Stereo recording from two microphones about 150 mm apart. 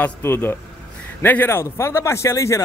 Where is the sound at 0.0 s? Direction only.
15° left (ahead or behind).